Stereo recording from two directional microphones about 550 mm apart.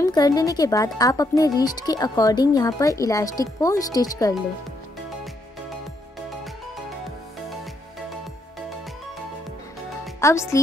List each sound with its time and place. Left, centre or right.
0.0 s speech: centre
10.2 s speech: centre